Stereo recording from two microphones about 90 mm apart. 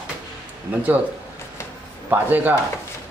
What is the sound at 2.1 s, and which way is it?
Speech, 20° right (ahead or behind).